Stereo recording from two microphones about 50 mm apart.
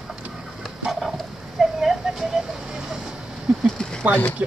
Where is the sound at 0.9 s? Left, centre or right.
Centre.